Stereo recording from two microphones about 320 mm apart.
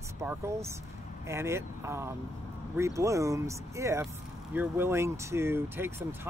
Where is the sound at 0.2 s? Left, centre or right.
Centre.